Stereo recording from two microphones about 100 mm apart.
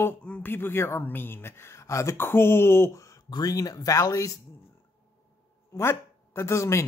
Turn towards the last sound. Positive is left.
turn(degrees=30)  # may be behind; listen again after turning